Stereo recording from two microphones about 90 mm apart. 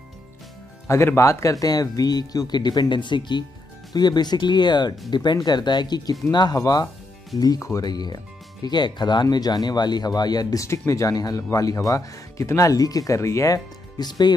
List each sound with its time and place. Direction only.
0.8 s speech: 30° left (ahead or behind)
13.9 s speech: 50° left (ahead or behind)